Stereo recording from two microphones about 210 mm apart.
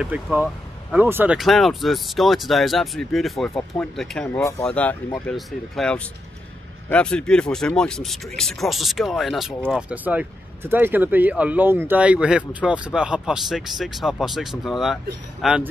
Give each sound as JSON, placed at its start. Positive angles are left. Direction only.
{"t": 0.0, "sound": "speech", "side_deg": -5}
{"t": 4.4, "sound": "speech", "side_deg": 15}